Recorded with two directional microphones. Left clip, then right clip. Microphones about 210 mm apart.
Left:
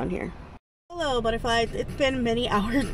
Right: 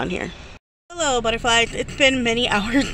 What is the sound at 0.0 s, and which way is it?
Speech, centre (ahead or behind).